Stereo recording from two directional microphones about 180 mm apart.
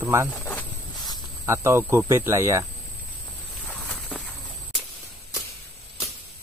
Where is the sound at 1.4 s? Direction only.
15° right (ahead or behind).